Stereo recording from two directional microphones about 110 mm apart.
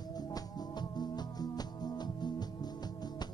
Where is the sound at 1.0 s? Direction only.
40° left (ahead or behind).